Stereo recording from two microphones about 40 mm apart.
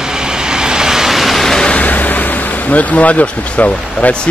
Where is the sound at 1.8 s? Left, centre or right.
Left.